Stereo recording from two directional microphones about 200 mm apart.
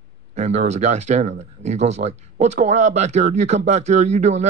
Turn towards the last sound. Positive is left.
turn(degrees=-35)  # may be behind; listen again after turning